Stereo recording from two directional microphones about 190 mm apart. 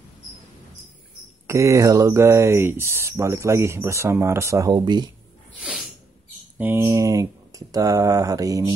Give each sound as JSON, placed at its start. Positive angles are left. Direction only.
{"t": 1.5, "sound": "speech", "side_deg": -15}
{"t": 5.6, "sound": "sneeze", "side_deg": 0}
{"t": 6.6, "sound": "speech", "side_deg": -15}